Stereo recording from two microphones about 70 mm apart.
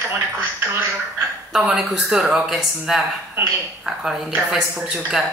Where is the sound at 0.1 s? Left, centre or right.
Right.